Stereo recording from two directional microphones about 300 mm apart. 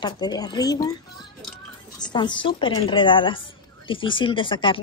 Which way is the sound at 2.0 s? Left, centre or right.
Centre.